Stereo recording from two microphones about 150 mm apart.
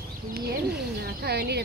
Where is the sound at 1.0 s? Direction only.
90° right.